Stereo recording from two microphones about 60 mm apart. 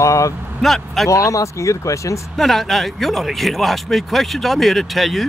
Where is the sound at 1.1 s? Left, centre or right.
Left.